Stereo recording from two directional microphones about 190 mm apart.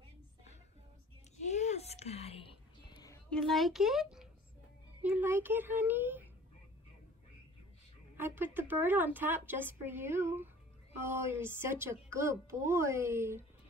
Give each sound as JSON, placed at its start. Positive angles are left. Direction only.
{"t": 1.3, "sound": "a sound", "side_deg": 35}
{"t": 3.3, "sound": "a child's voice", "side_deg": 0}
{"t": 8.2, "sound": "a woman's voice", "side_deg": -10}